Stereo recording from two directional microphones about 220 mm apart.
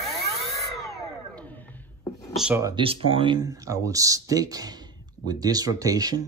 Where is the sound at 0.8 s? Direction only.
5° left (ahead or behind).